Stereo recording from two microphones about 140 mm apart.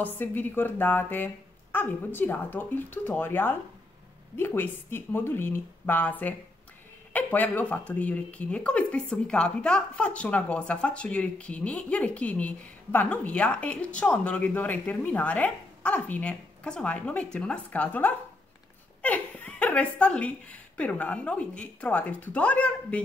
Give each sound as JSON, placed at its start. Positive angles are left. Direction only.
{"t": 0.0, "sound": "speech", "side_deg": 15}